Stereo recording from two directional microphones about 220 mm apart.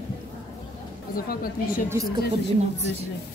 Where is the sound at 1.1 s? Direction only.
40° left (ahead or behind).